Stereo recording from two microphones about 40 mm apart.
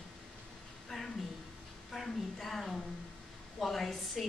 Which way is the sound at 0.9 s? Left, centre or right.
Centre.